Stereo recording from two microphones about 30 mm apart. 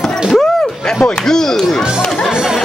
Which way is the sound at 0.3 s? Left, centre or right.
Centre.